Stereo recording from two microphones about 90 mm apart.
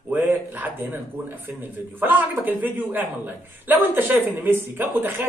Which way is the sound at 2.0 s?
20° right (ahead or behind).